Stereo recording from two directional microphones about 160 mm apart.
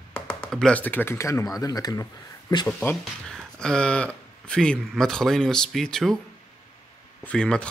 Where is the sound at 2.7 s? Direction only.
5° left (ahead or behind).